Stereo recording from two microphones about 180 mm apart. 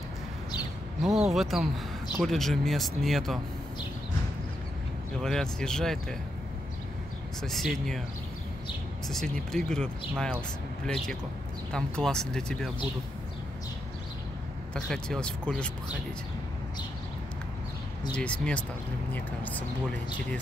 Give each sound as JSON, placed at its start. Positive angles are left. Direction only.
{"t": 1.0, "sound": "speech", "side_deg": -5}
{"t": 5.2, "sound": "speech", "side_deg": 5}
{"t": 7.4, "sound": "speech", "side_deg": 0}
{"t": 9.1, "sound": "speech", "side_deg": 0}
{"t": 11.7, "sound": "speech", "side_deg": 5}
{"t": 14.7, "sound": "speech", "side_deg": 5}
{"t": 18.1, "sound": "speech", "side_deg": 5}